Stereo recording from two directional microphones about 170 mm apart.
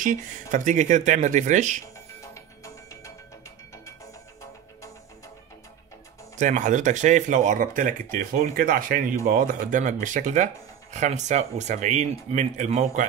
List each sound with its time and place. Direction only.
0.0 s speech: 45° right (ahead or behind)
2.3 s music: 20° left (ahead or behind)
6.3 s speech: 45° right (ahead or behind)